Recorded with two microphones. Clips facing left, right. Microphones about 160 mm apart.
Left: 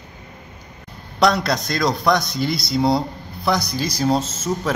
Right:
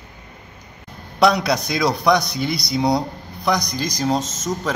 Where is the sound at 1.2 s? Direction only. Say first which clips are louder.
Right 1 dB; centre (ahead or behind).